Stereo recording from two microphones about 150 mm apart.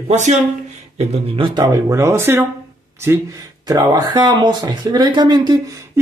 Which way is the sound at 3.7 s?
25° right (ahead or behind).